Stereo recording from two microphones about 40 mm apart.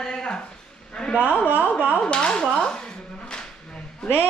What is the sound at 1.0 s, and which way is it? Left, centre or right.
Speech, centre.